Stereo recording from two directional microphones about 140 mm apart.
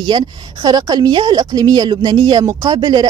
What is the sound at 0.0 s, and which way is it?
A woman's voice, 30° right (ahead or behind).